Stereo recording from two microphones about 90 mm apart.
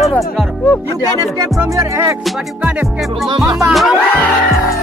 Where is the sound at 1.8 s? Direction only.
30° right (ahead or behind).